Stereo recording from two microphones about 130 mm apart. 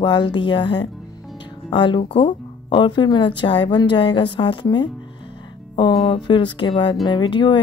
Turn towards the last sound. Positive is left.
turn(degrees=35)  # may be behind; listen again after turning